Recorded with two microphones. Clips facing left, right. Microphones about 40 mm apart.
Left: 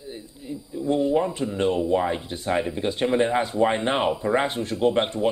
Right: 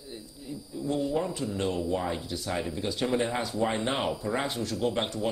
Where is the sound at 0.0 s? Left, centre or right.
Left.